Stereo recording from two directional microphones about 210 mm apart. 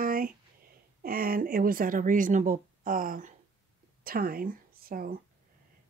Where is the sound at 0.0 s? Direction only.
45° right (ahead or behind).